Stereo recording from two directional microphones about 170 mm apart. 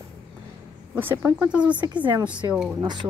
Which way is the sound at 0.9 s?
10° right (ahead or behind).